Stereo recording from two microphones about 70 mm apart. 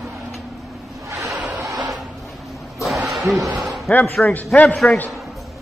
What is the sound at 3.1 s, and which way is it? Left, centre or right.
Speech, centre.